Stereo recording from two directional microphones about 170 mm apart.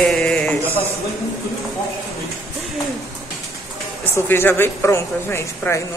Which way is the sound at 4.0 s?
10° left (ahead or behind).